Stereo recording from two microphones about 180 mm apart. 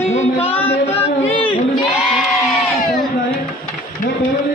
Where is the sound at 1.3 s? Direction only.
30° left (ahead or behind).